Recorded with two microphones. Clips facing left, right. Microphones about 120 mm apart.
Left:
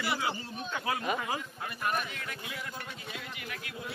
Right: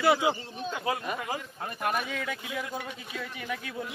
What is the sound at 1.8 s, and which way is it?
Speech, 90° right.